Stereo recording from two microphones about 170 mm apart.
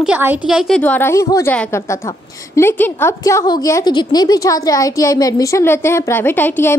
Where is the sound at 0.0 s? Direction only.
10° right (ahead or behind).